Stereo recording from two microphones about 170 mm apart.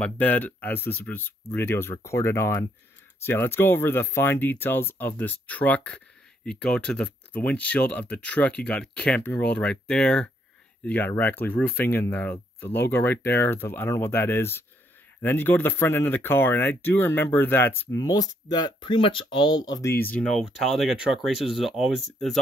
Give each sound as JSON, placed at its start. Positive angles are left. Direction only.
{"t": 0.0, "sound": "speech", "side_deg": 10}